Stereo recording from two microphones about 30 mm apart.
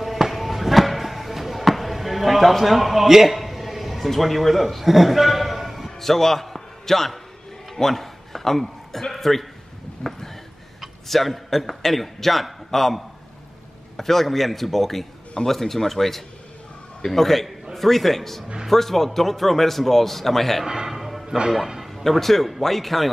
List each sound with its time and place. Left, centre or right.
0.0 s basketball bounce: centre
3.3 s a man's voice: centre
5.9 s music: centre
9.1 s a man's voice: centre
10.0 s a sound: left
11.1 s a man's voice: centre
20.6 s a man's voice: centre
20.9 s music: centre
22.1 s a man's voice: centre